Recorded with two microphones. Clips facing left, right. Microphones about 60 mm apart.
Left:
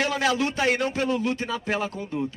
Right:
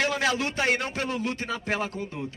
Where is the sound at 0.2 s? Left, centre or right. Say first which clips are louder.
Left 3 dB; right.